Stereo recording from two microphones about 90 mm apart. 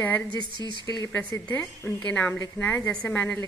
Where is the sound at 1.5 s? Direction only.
20° left (ahead or behind).